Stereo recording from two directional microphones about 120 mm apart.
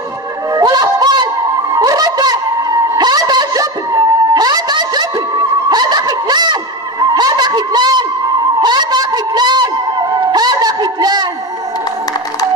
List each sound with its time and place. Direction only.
0.6 s a sound: 30° right (ahead or behind)
5.7 s snicker: 35° right (ahead or behind)
8.5 s music: 35° right (ahead or behind)